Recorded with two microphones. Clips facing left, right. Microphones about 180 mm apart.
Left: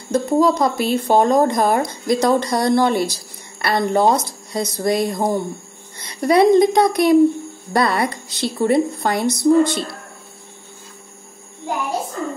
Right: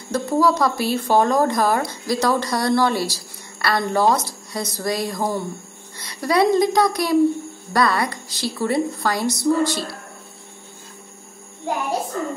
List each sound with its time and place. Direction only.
0.1 s speech: 20° left (ahead or behind)